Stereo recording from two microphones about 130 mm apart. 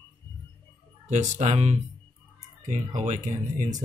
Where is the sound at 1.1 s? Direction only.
60° right (ahead or behind).